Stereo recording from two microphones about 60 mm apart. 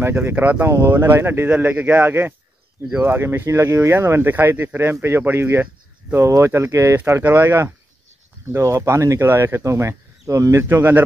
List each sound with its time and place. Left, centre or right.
0.0 s speech: right
1.5 s speech: right
2.0 s speech: right
6.1 s speech: right
7.2 s speech: right
8.5 s speech: right
9.2 s speech: right
9.6 s speech: right
10.6 s speech: right